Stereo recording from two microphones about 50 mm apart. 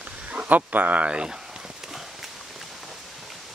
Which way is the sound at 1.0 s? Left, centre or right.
Centre.